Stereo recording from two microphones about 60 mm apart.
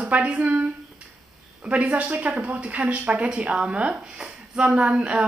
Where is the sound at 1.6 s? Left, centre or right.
Right.